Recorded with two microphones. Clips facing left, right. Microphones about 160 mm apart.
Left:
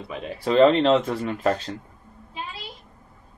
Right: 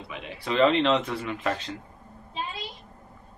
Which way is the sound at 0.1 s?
40° left (ahead or behind).